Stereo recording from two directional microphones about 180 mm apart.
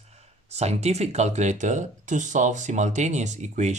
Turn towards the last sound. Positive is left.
turn(degrees=-40)  # may be behind; listen again after turning